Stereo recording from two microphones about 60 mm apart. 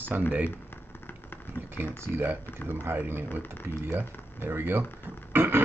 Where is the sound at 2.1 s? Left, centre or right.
Right.